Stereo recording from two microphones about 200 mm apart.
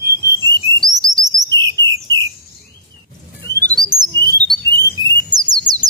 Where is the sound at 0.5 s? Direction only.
20° right (ahead or behind).